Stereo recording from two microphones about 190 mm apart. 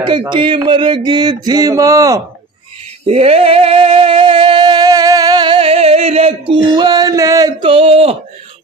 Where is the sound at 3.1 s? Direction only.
30° right (ahead or behind).